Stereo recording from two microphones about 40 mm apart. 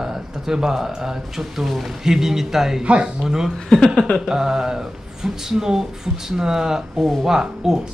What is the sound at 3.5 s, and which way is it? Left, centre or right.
Speech, centre.